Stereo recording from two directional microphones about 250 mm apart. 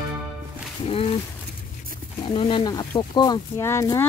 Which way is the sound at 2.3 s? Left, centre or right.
Centre.